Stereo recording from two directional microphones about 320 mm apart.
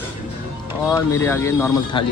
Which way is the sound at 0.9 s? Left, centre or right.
Centre.